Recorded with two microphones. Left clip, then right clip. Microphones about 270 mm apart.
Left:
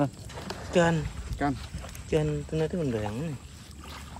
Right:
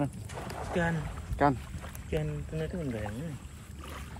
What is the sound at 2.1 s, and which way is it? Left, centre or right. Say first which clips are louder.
Speech: left 8 dB; centre.